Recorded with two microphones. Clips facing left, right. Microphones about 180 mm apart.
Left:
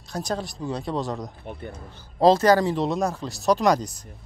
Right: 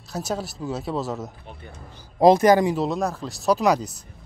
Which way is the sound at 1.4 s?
55° left (ahead or behind).